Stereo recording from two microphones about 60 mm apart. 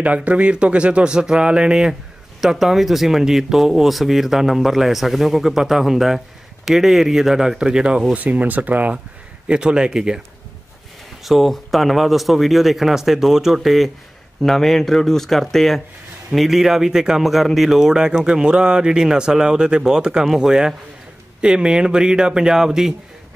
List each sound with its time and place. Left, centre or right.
0.0 s speech: right
8.1 s speech: right
9.5 s speech: centre
11.2 s speech: centre